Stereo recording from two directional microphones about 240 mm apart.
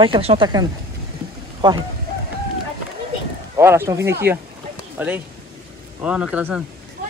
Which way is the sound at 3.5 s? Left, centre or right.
Centre.